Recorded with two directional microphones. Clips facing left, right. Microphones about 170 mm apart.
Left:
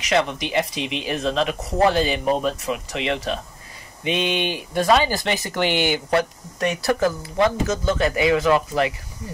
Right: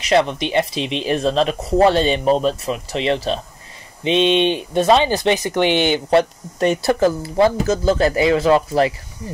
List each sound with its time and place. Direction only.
0.0 s speech: 35° right (ahead or behind)